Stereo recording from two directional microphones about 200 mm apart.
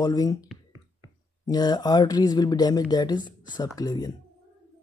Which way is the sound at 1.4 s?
20° left (ahead or behind).